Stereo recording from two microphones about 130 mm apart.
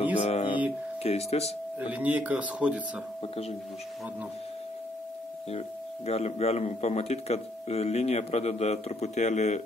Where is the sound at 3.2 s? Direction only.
50° left (ahead or behind).